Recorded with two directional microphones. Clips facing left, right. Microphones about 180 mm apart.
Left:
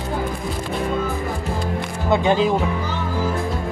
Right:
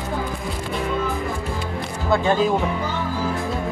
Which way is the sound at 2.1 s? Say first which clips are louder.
Left 2 dB; 20° left (ahead or behind).